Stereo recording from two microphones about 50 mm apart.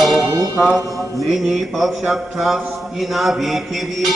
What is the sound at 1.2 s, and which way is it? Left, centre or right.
A man's voice, centre.